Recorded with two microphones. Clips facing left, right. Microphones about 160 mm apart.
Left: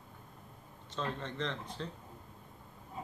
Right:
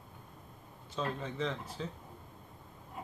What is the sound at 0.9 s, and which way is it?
Speech, 5° right (ahead or behind).